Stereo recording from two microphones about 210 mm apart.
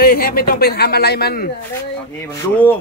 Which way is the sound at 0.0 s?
45° left (ahead or behind).